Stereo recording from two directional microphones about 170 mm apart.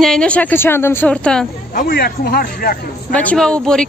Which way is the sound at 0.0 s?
5° left (ahead or behind).